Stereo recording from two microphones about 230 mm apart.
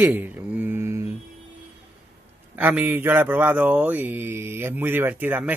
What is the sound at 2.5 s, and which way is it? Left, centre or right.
Speech, centre.